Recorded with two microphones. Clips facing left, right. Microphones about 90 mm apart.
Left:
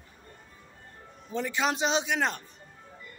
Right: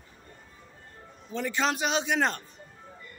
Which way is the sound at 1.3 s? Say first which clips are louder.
Even; 10° left (ahead or behind).